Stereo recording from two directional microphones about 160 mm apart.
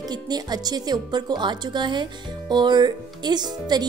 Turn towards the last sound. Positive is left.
turn(degrees=-25)  # may be behind; listen again after turning